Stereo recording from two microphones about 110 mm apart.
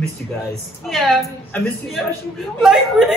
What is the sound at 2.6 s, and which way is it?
Speech, 5° right (ahead or behind).